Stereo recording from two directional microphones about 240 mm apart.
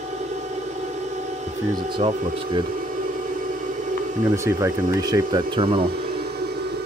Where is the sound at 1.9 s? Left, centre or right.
Centre.